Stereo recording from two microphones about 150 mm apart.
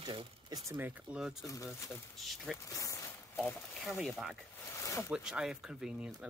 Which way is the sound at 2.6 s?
20° left (ahead or behind).